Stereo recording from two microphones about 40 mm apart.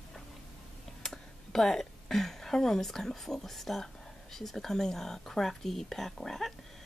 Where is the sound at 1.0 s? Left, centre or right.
Centre.